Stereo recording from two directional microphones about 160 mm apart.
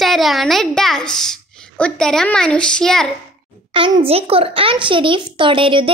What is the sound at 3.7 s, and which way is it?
A child's voice, 30° right (ahead or behind).